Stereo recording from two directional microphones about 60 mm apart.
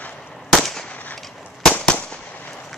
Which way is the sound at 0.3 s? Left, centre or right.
Centre.